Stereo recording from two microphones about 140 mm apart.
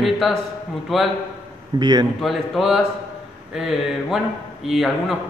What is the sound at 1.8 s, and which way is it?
Speech, 30° right (ahead or behind).